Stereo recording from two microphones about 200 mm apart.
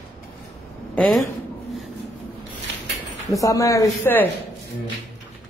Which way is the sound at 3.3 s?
15° left (ahead or behind).